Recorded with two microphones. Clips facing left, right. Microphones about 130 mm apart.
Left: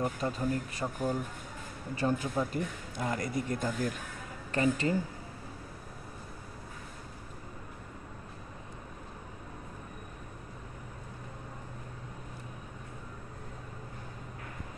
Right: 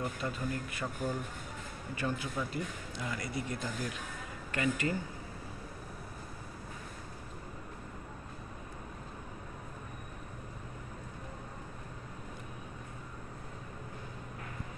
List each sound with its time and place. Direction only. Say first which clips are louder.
0.0 s speech: left 5 dB; 35° left (ahead or behind)
4.5 s speech: left 4 dB; 30° left (ahead or behind)